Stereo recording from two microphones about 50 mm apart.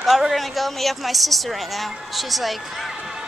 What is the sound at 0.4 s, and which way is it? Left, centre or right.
A woman's voice, centre.